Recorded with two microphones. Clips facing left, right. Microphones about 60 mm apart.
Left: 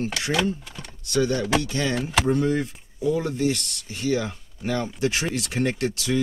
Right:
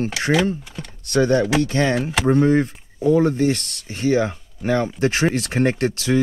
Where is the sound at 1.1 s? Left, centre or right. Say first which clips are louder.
Right 5 dB; right.